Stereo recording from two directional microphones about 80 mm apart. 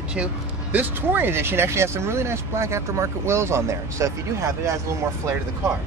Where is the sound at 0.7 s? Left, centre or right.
Right.